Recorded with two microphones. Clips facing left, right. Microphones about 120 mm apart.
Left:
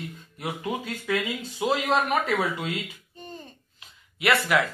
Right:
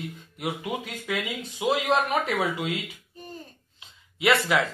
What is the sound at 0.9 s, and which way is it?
Speech, 15° right (ahead or behind).